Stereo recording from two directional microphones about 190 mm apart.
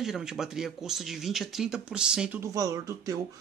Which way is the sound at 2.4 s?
20° right (ahead or behind).